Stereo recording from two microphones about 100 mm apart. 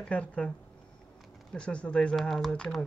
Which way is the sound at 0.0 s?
10° left (ahead or behind).